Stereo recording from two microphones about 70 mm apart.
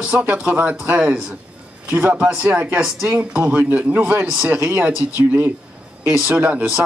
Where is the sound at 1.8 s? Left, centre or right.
Right.